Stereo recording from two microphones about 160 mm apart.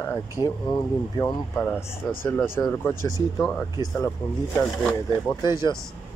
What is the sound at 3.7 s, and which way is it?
Speech, 25° left (ahead or behind).